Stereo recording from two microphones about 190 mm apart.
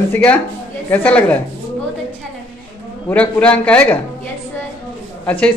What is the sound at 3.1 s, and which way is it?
Speech, 10° left (ahead or behind).